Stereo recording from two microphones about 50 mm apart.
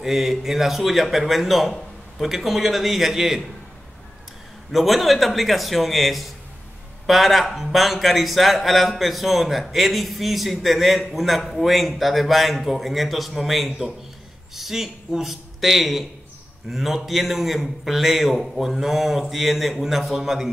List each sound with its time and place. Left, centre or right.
0.0 s speech: centre
4.7 s speech: centre